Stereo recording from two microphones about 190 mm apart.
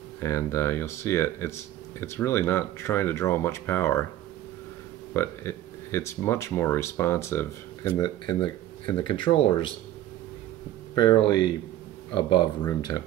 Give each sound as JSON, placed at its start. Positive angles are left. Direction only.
{"t": 0.2, "sound": "speech", "side_deg": 15}
{"t": 5.1, "sound": "speech", "side_deg": 15}
{"t": 8.0, "sound": "speech", "side_deg": 25}
{"t": 11.0, "sound": "speech", "side_deg": 25}